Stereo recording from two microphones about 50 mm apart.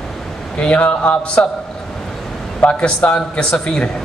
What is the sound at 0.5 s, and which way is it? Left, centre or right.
Speech, left.